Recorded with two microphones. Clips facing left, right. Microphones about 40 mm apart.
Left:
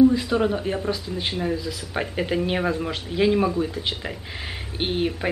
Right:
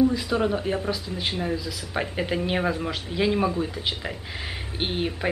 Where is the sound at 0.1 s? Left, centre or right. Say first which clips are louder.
Left 2 dB; centre.